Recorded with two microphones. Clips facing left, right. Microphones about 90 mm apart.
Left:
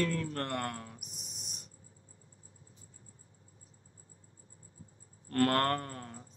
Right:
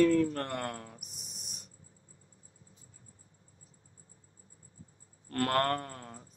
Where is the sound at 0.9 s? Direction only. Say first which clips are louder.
Left 1 dB; 40° right (ahead or behind).